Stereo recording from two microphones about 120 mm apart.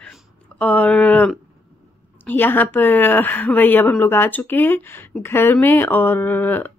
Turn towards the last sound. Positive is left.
turn(degrees=15)  # may be behind; listen again after turning